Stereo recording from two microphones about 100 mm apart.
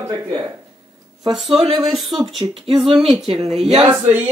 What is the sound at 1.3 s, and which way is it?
Speech, 5° right (ahead or behind).